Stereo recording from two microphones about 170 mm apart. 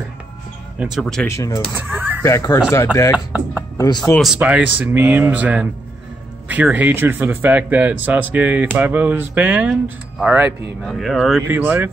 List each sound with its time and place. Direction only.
0.7 s speech: 5° right (ahead or behind)
1.2 s speech: 15° left (ahead or behind)
4.0 s speech: centre (ahead or behind)
11.4 s speech: 10° right (ahead or behind)